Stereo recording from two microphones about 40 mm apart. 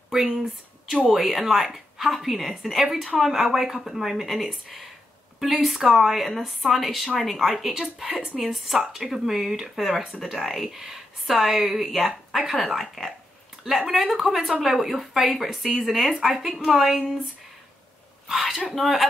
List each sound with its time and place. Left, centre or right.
0.1 s a woman's voice: centre
8.5 s a woman's voice: centre
16.1 s a woman's voice: centre
18.7 s a woman's voice: centre